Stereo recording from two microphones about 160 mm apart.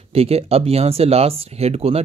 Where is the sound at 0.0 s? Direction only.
40° right (ahead or behind).